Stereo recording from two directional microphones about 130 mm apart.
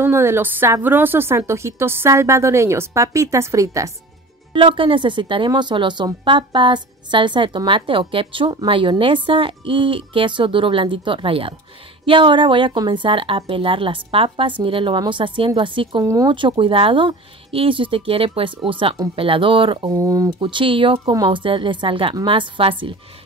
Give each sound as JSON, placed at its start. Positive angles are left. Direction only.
{"t": 0.0, "sound": "a woman's voice", "side_deg": -20}
{"t": 4.6, "sound": "a woman's voice", "side_deg": -40}
{"t": 16.0, "sound": "a woman's voice", "side_deg": -25}
{"t": 16.3, "sound": "a woman's voice", "side_deg": -40}
{"t": 19.9, "sound": "a woman's voice", "side_deg": -25}